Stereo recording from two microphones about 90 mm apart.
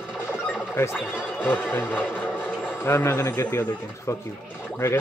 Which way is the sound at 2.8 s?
30° left (ahead or behind).